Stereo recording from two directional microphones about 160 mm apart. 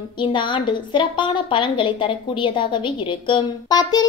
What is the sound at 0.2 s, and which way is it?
A woman's voice, 30° left (ahead or behind).